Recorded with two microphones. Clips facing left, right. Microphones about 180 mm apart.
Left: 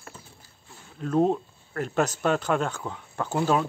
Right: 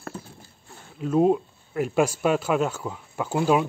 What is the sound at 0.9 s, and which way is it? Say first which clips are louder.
Speech: right 3 dB; 5° right (ahead or behind).